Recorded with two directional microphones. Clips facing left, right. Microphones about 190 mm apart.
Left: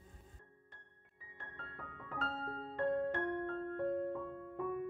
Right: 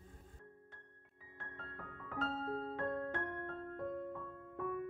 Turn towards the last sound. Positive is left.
turn(degrees=0)  # may be behind; listen again after turning